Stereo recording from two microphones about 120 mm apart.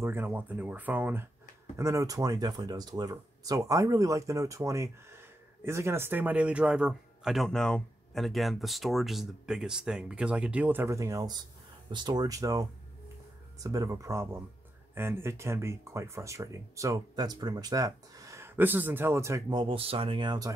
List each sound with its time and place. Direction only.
0.0 s speech: 20° right (ahead or behind)
1.8 s speech: 25° right (ahead or behind)
19.5 s speech: 45° right (ahead or behind)